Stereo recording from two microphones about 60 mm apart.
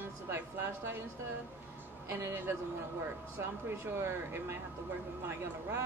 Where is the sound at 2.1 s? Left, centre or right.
Right.